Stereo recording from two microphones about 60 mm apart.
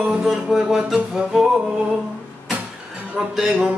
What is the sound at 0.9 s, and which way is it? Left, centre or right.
Music, centre.